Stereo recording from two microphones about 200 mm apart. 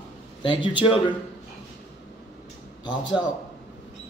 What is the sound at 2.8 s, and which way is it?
Mantra, 20° left (ahead or behind).